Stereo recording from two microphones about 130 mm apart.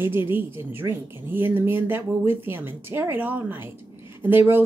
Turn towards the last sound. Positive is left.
turn(degrees=-15)  # may be behind; listen again after turning